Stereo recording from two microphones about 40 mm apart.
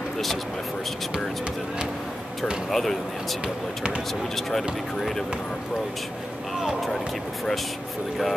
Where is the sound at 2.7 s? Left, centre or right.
Centre.